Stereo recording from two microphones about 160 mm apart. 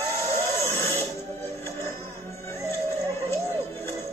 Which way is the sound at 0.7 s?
15° left (ahead or behind).